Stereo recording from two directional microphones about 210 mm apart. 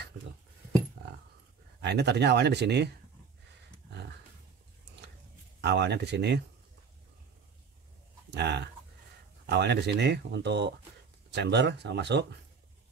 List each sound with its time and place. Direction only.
1.8 s speech: 55° right (ahead or behind)
5.6 s speech: 55° right (ahead or behind)
8.3 s speech: 55° right (ahead or behind)